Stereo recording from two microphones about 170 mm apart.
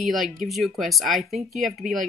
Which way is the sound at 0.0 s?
Centre (ahead or behind).